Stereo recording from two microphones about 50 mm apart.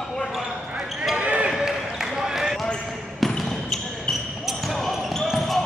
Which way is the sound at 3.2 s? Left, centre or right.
Centre.